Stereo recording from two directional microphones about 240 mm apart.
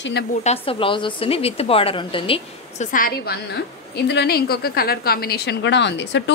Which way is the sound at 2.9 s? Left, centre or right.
Left.